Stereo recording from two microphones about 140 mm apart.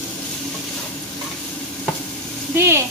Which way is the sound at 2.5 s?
20° right (ahead or behind).